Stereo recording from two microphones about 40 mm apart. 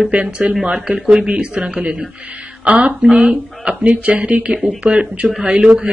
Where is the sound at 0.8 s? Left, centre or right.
Centre.